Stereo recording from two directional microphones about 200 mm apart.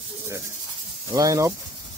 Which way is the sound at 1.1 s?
15° right (ahead or behind).